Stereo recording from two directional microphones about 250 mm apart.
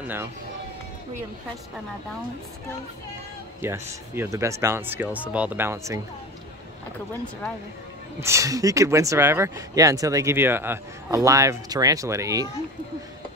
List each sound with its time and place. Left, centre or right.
0.0 s speech: centre
3.6 s speech: centre
8.2 s speech: centre